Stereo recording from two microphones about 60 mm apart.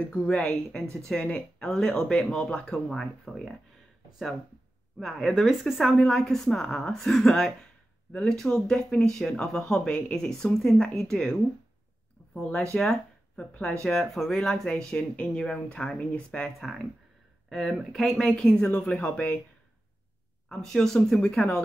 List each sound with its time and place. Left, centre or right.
0.0 s speech: centre
4.9 s speech: centre
5.9 s speech: centre
12.7 s speech: centre
16.5 s speech: centre
18.3 s speech: centre
20.4 s speech: centre